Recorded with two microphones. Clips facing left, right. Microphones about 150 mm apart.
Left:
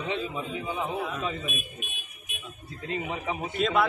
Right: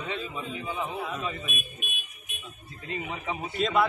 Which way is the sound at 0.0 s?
15° left (ahead or behind).